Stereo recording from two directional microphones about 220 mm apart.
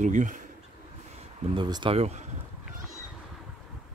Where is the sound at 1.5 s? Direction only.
20° right (ahead or behind).